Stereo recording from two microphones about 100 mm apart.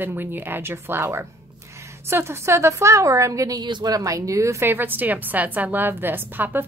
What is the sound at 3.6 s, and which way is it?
A woman's voice, 45° right (ahead or behind).